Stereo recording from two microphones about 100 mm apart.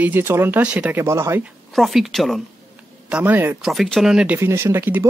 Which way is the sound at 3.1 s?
15° right (ahead or behind).